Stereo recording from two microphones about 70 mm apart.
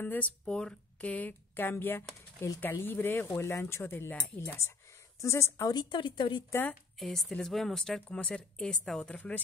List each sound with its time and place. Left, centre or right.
0.0 s speech: left
0.5 s speech: centre; by 5.7 s left
5.7 s a woman's voice: left
6.5 s speech: left
7.0 s a woman's voice: centre